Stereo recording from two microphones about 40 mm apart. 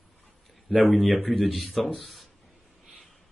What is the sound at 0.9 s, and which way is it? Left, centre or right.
Speech, centre.